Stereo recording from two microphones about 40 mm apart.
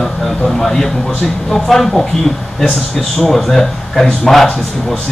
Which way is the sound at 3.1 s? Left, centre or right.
Centre.